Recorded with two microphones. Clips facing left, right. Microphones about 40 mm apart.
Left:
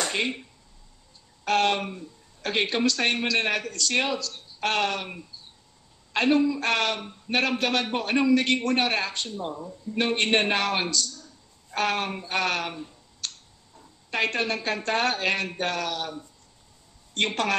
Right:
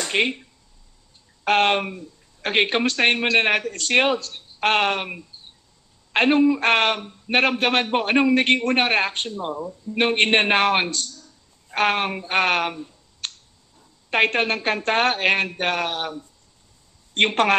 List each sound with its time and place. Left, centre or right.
0.1 s a man's voice: right
1.4 s a man's voice: right
5.3 s a sound: right
6.1 s a man's voice: right
9.4 s speech: right
9.9 s a man's voice: right
13.2 s a sound: right
14.1 s a man's voice: right